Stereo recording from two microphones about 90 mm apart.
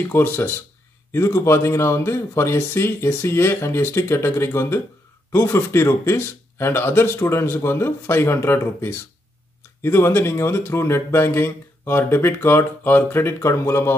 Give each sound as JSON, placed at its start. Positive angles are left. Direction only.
{"t": 0.1, "sound": "speech", "side_deg": 25}